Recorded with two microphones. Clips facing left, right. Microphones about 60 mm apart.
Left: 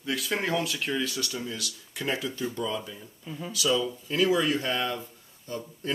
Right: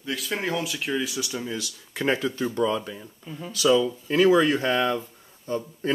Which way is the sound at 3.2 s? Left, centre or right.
Centre.